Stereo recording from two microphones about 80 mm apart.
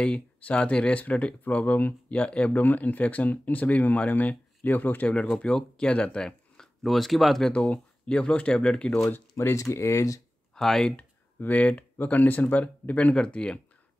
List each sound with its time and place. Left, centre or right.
0.0 s speech: centre
9.1 s speech: left
10.5 s speech: centre
11.3 s speech: left